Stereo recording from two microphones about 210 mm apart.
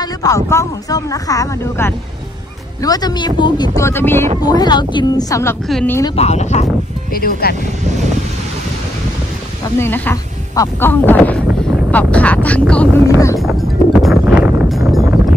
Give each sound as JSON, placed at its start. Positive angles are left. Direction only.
{"t": 0.0, "sound": "speech", "side_deg": 15}
{"t": 5.7, "sound": "speech", "side_deg": 5}
{"t": 6.1, "sound": "speech", "side_deg": 30}
{"t": 7.2, "sound": "speech", "side_deg": 45}
{"t": 9.8, "sound": "speech", "side_deg": 10}
{"t": 13.4, "sound": "music", "side_deg": 0}